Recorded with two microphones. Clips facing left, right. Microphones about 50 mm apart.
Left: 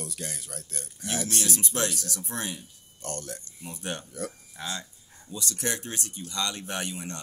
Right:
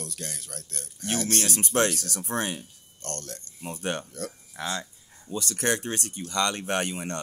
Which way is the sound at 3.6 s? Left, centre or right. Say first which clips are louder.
Right 5 dB; right.